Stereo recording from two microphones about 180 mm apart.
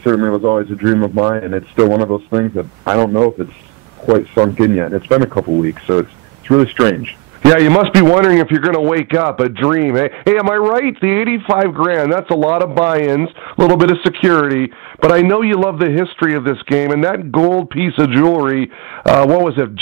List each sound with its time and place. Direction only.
0.0 s a man's voice: 20° right (ahead or behind)
6.5 s a man's voice: 20° right (ahead or behind)